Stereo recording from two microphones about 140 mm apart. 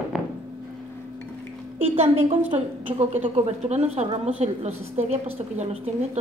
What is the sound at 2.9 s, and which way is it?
A woman's voice, 45° right (ahead or behind).